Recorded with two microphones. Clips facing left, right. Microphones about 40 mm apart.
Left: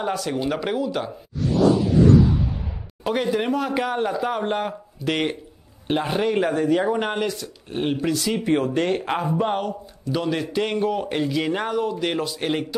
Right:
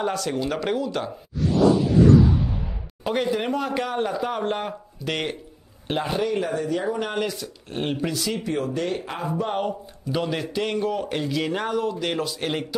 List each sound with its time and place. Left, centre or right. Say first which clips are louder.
0.0 s speech: left 1 dB; centre
3.0 s a man's voice: left 1 dB; centre
6.1 s speech: left 4 dB; left
7.2 s speech: left 1 dB; centre
8.5 s speech: left 7 dB; left
10.1 s speech: left 2 dB; centre